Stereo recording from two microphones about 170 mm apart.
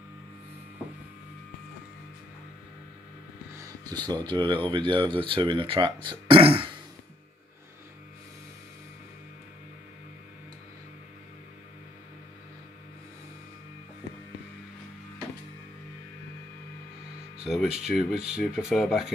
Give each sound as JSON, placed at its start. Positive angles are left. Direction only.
{"t": 3.5, "sound": "a sound", "side_deg": -20}
{"t": 4.1, "sound": "speech", "side_deg": -25}
{"t": 17.4, "sound": "speech", "side_deg": -5}